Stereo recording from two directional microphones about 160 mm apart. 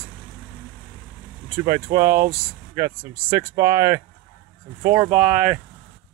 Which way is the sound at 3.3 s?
20° right (ahead or behind).